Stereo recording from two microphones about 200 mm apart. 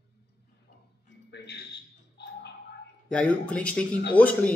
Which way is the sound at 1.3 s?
55° left (ahead or behind).